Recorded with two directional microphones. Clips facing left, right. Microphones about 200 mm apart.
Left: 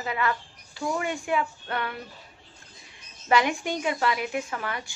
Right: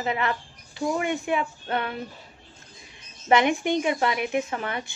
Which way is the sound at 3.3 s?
20° right (ahead or behind).